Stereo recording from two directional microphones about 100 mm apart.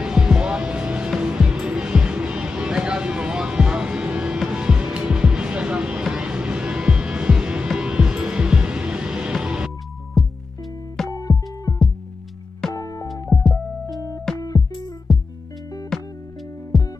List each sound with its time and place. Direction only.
0.0 s music: 10° right (ahead or behind)
11.1 s music: 35° left (ahead or behind)
13.3 s music: centre (ahead or behind)
14.4 s music: 40° left (ahead or behind)
15.1 s music: centre (ahead or behind)